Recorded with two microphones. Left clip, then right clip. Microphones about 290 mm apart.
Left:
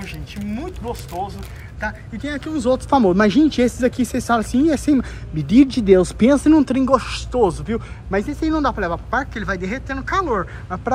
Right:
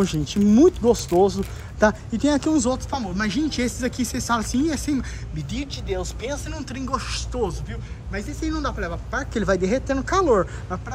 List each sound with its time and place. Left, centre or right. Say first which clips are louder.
0.0 s speech: right 9 dB; centre
1.8 s speech: right 7 dB; centre
2.9 s speech: left 11 dB; centre